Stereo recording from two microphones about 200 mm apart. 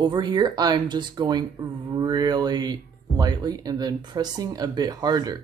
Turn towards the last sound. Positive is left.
turn(degrees=-20)  # may be behind; listen again after turning